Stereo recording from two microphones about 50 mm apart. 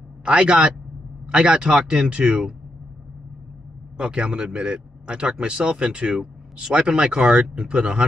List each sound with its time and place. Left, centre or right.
0.2 s a man's voice: right
4.0 s speech: right